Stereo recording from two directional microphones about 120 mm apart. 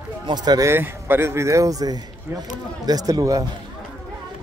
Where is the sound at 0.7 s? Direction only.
20° right (ahead or behind).